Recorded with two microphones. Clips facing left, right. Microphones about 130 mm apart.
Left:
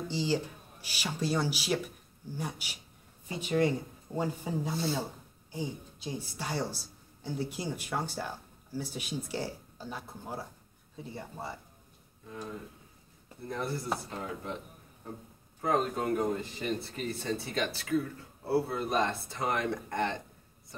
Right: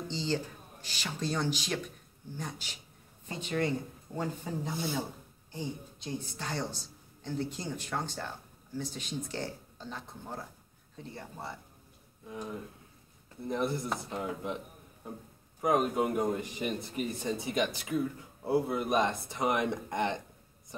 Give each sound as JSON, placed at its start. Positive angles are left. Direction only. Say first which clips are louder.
{"t": 0.1, "sound": "a woman's voice", "louder": "left 2 dB", "side_deg": 10}
{"t": 12.3, "sound": "a man's voice", "louder": "right 1 dB", "side_deg": -15}